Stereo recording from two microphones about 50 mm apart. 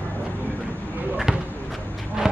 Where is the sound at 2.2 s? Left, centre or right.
Centre.